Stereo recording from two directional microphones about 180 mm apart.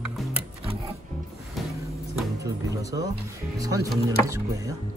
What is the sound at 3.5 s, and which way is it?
Speech, 20° right (ahead or behind).